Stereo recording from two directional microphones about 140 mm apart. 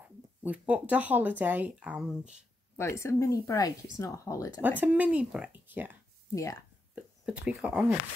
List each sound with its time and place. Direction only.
0.0 s speech: 10° right (ahead or behind)
2.8 s speech: 20° left (ahead or behind)
4.6 s speech: 10° right (ahead or behind)
7.0 s speech: 10° right (ahead or behind)